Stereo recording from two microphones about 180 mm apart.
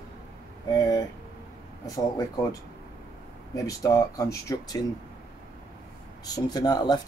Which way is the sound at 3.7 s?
20° left (ahead or behind).